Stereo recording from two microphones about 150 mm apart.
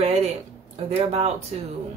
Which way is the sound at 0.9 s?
45° right (ahead or behind).